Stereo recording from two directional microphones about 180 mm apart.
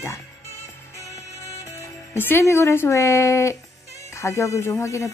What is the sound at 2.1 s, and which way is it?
Speech, 10° left (ahead or behind).